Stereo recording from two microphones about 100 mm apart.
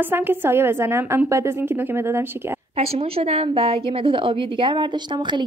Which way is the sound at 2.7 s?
80° right.